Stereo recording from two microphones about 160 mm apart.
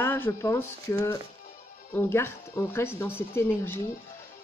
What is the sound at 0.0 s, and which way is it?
Speech, 15° left (ahead or behind).